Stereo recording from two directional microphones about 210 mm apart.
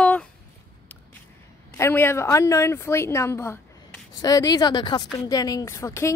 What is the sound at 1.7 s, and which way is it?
A woman's voice, 10° left (ahead or behind).